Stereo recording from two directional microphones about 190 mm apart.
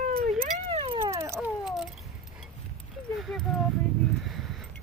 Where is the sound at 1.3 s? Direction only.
Centre (ahead or behind).